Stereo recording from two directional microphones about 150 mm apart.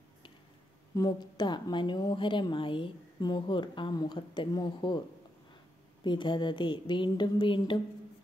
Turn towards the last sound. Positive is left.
turn(degrees=35)  # may be behind; listen again after turning